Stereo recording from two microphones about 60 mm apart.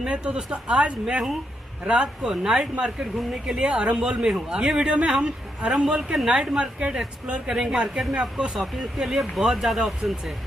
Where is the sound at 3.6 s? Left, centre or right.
Centre.